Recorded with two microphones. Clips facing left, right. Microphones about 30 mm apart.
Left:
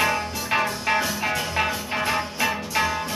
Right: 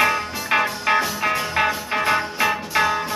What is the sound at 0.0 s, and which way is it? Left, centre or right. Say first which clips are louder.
Music: right 3 dB; centre.